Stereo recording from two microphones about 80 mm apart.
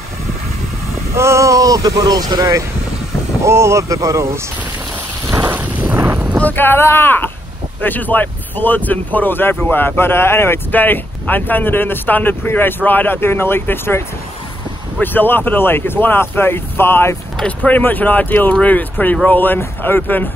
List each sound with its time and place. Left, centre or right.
1.1 s speech: right
3.4 s speech: right
5.2 s rain: right
5.6 s wind noise: right
6.4 s speech: left